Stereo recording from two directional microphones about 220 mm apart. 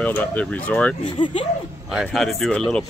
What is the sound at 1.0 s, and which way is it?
Speech, 20° left (ahead or behind).